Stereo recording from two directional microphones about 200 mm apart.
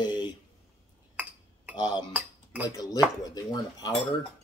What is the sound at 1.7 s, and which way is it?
Speech, 20° left (ahead or behind).